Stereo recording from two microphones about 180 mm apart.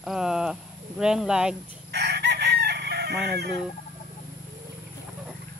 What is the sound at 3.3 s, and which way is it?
Fowl, 65° right (ahead or behind).